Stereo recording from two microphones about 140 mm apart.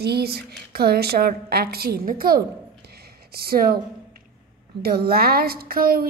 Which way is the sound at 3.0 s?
90° right.